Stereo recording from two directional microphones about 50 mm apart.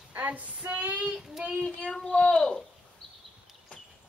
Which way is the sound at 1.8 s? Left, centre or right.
Centre.